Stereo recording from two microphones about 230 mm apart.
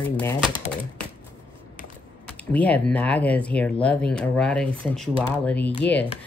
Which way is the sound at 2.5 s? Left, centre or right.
Centre.